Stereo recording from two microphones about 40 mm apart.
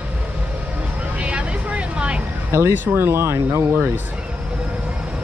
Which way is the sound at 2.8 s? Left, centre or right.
Right.